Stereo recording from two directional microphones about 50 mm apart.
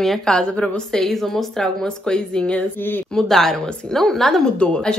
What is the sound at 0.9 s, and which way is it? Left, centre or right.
Speech, centre.